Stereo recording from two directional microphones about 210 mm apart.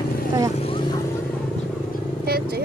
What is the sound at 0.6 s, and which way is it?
Vehicle, 25° left (ahead or behind).